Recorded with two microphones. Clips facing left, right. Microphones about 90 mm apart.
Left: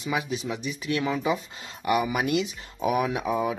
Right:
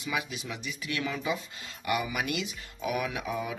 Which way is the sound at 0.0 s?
30° left (ahead or behind).